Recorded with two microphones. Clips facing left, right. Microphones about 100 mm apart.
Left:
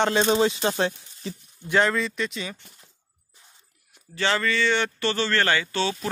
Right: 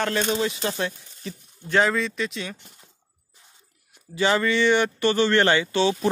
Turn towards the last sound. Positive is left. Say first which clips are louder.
# right 4 dB
turn(degrees=-20)  # may be behind; listen again after turning